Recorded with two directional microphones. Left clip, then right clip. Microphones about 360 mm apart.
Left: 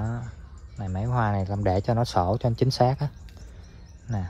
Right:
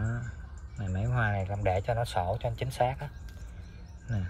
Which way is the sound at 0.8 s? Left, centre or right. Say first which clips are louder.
Left 5 dB; left.